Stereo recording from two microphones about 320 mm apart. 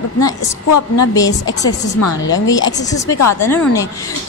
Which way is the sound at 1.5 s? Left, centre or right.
Left.